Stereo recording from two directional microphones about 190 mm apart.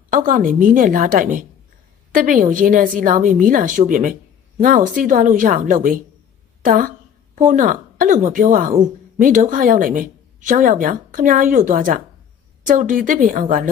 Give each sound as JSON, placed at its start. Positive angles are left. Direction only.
{"t": 0.1, "sound": "a woman's voice", "side_deg": -45}